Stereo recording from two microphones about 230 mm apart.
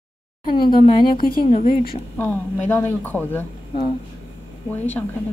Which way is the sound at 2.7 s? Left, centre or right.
Centre.